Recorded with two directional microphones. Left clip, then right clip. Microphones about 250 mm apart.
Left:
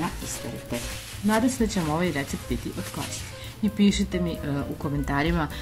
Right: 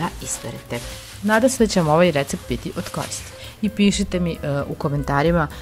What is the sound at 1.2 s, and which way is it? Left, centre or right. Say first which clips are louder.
Speech: right 8 dB; right.